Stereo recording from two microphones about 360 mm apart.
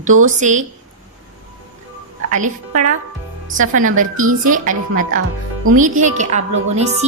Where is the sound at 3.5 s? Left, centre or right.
Right.